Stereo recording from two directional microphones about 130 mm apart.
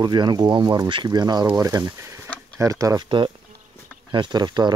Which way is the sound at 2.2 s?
10° left (ahead or behind).